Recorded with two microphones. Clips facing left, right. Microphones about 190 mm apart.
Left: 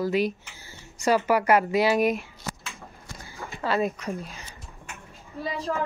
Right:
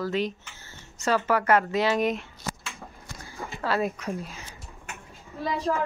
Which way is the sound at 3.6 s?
Centre (ahead or behind).